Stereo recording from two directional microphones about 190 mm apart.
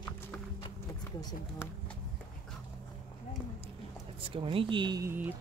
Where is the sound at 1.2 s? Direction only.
20° left (ahead or behind).